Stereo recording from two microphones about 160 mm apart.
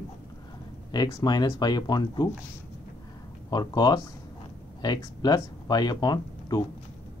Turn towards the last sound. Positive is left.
turn(degrees=25)  # may be behind; listen again after turning